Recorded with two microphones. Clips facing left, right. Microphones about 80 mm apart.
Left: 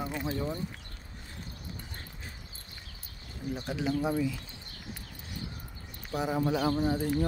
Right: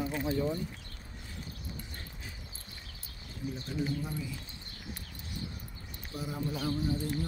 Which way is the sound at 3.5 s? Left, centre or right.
Left.